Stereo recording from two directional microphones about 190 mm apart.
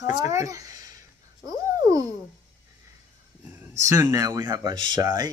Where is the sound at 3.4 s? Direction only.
10° right (ahead or behind).